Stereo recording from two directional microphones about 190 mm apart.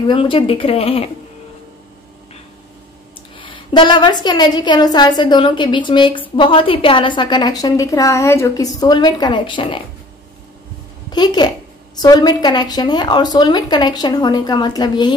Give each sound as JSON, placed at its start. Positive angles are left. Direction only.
{"t": 0.1, "sound": "a woman's voice", "side_deg": 30}
{"t": 3.3, "sound": "a woman's voice", "side_deg": 25}
{"t": 11.1, "sound": "a woman's voice", "side_deg": 20}